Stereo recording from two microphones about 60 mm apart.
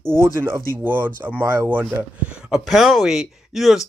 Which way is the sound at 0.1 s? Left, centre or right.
Right.